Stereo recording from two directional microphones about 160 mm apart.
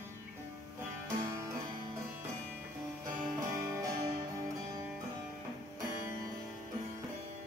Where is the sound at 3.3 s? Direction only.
20° right (ahead or behind).